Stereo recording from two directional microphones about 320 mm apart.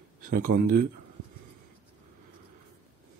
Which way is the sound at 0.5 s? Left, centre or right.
Right.